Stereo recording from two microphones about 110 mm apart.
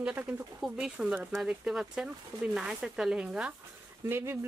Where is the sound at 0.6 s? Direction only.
5° right (ahead or behind).